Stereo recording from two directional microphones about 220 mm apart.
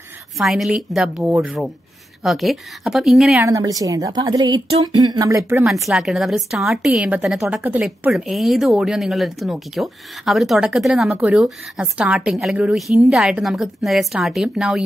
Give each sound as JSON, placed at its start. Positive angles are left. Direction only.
{"t": 0.4, "sound": "a woman's voice", "side_deg": 0}
{"t": 3.3, "sound": "a woman's voice", "side_deg": -15}
{"t": 5.6, "sound": "a woman's voice", "side_deg": 0}